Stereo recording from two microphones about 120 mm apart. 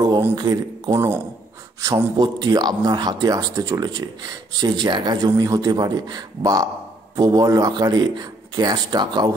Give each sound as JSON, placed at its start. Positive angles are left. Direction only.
{"t": 0.4, "sound": "a man's voice", "side_deg": -30}